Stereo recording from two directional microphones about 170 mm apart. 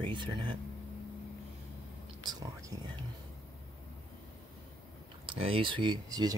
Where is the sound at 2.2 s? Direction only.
20° right (ahead or behind).